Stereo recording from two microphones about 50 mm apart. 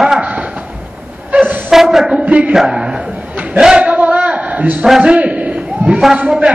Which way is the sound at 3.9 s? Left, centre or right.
Right.